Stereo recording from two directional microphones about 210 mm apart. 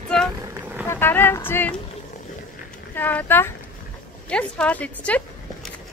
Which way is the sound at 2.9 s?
10° left (ahead or behind).